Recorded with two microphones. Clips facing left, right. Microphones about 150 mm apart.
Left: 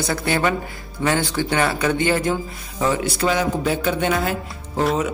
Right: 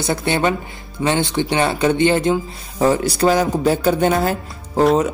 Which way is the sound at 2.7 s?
40° right (ahead or behind).